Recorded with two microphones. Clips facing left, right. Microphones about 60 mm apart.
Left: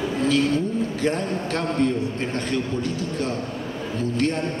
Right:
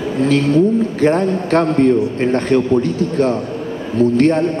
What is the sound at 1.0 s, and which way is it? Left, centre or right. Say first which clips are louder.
A man's voice: right 10 dB; right.